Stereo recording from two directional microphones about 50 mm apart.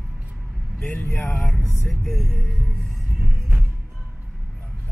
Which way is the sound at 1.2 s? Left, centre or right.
Centre.